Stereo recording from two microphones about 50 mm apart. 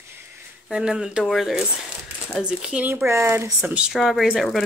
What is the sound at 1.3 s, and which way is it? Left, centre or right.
Speech, centre.